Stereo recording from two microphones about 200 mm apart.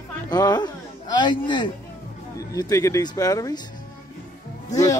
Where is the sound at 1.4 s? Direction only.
25° left (ahead or behind).